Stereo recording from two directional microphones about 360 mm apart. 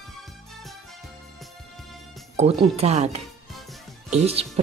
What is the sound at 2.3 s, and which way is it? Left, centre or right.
A woman's voice, centre.